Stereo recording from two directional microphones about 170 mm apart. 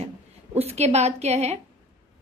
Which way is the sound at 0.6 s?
40° right (ahead or behind).